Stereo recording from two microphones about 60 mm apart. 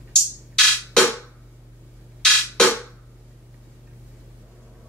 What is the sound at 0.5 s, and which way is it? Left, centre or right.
Music, centre.